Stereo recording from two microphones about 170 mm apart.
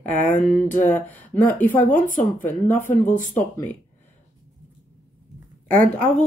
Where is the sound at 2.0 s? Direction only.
50° left (ahead or behind).